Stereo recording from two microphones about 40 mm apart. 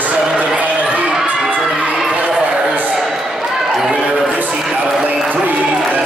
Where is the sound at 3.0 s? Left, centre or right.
Centre.